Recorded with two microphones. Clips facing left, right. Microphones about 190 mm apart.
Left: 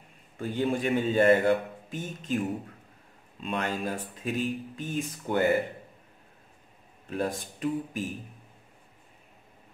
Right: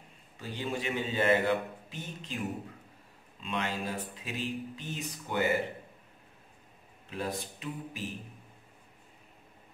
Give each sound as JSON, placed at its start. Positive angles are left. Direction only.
{"t": 0.4, "sound": "a man's voice", "side_deg": 50}
{"t": 3.4, "sound": "a man's voice", "side_deg": 50}
{"t": 7.1, "sound": "a man's voice", "side_deg": 45}